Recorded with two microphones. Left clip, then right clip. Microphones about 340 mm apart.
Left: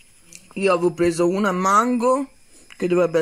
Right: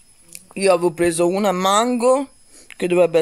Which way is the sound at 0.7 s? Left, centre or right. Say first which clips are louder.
Right 2 dB; centre.